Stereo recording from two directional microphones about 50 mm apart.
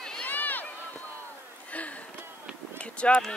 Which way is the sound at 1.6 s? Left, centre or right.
Left.